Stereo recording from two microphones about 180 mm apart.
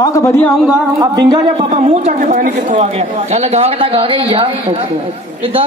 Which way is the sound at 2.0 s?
45° right (ahead or behind).